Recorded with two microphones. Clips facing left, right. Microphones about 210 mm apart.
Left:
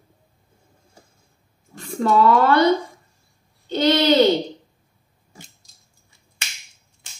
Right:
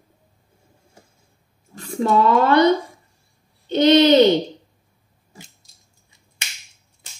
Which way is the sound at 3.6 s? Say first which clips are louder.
Right 4 dB; 20° right (ahead or behind).